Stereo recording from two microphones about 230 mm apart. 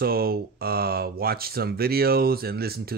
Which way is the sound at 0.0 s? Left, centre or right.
Right.